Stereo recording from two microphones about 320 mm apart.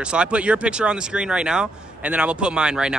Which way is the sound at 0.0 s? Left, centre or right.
Centre.